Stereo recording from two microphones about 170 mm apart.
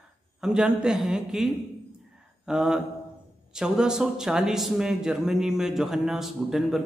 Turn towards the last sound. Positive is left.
turn(degrees=0)  # may be behind; listen again after turning